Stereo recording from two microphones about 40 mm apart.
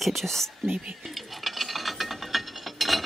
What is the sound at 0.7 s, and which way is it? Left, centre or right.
Speech, centre.